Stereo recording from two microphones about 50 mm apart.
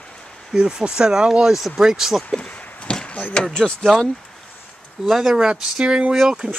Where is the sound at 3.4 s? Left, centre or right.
Centre.